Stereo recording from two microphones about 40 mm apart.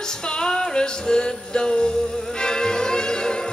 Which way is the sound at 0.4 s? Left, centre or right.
Centre.